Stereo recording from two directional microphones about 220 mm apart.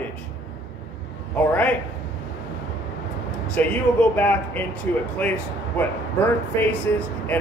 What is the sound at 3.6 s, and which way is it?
A man's voice, 5° left (ahead or behind).